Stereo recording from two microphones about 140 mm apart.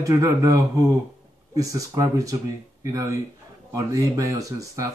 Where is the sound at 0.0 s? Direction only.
25° right (ahead or behind).